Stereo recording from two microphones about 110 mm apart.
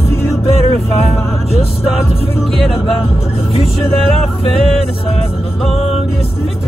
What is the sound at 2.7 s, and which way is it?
Speech, 60° left (ahead or behind).